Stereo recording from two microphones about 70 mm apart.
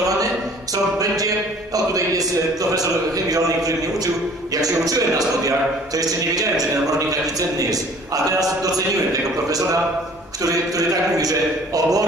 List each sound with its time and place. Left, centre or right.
0.9 s a man's voice: right